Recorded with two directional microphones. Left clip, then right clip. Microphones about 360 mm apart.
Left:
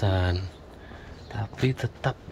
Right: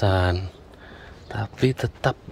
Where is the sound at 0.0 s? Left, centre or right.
Centre.